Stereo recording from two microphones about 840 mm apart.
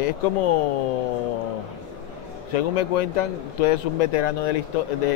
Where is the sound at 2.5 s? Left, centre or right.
Left.